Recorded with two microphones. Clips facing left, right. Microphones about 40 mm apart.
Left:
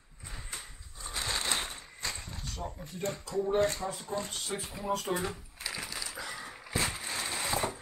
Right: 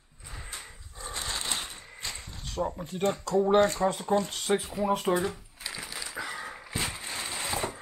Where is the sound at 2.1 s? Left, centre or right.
Right.